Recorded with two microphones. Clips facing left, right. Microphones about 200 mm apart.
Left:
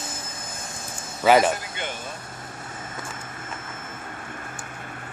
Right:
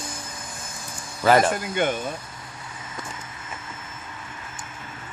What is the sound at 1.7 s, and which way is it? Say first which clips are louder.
Speech: right 10 dB; 50° right (ahead or behind).